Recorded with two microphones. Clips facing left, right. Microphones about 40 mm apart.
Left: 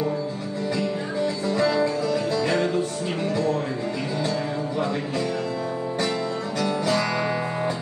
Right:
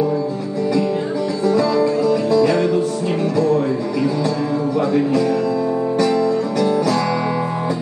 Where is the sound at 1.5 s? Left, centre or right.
Left.